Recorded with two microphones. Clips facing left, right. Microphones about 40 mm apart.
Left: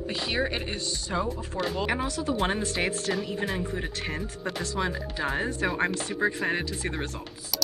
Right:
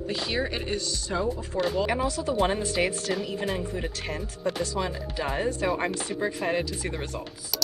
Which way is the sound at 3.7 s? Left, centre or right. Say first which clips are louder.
Even; centre.